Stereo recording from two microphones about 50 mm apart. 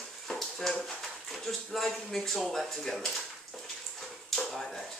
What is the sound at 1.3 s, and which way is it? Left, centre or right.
Speech, centre.